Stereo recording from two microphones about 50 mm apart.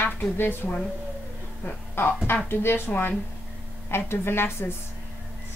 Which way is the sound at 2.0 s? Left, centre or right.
Left.